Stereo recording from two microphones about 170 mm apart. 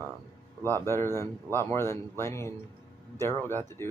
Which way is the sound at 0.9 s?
15° left (ahead or behind).